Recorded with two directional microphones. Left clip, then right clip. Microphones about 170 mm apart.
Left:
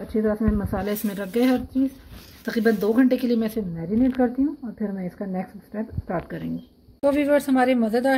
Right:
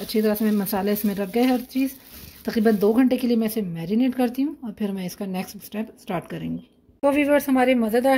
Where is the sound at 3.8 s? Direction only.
90° right.